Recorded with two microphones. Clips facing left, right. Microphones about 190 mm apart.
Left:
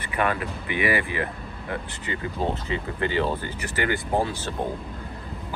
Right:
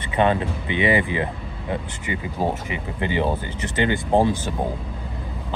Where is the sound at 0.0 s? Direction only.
25° right (ahead or behind).